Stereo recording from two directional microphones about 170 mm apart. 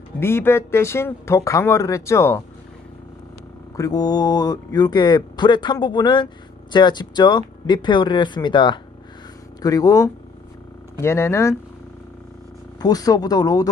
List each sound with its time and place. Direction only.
0.2 s speech: 15° left (ahead or behind)
3.7 s speech: 20° left (ahead or behind)
12.8 s speech: 20° left (ahead or behind)